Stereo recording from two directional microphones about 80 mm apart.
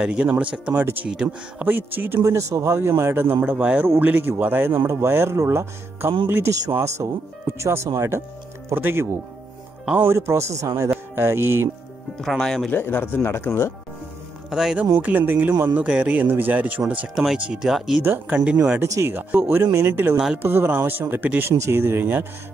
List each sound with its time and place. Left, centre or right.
0.0 s speech: centre
1.7 s speech: right
3.4 s speech: centre
12.2 s speech: centre
12.7 s speech: left
14.5 s speech: centre
14.9 s speech: right
17.1 s speech: centre
18.0 s speech: right
18.3 s speech: centre
18.8 s speech: right